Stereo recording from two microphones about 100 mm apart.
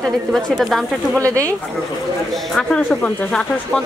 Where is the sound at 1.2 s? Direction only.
30° right (ahead or behind).